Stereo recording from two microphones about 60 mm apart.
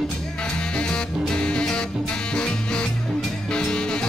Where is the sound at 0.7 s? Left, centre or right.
Centre.